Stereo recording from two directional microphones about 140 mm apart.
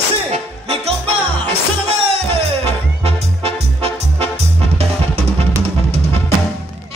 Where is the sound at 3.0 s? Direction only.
45° right (ahead or behind).